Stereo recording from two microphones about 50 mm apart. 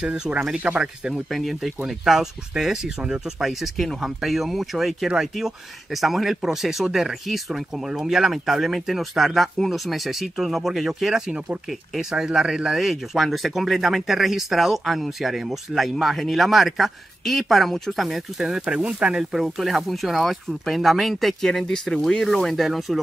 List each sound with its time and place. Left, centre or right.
0.0 s speech: right
1.3 s speech: centre
18.0 s speech: centre
18.7 s speech: right
19.4 s speech: centre
21.5 s speech: centre